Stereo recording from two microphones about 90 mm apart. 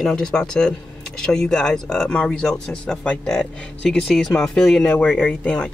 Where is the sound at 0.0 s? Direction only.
5° left (ahead or behind).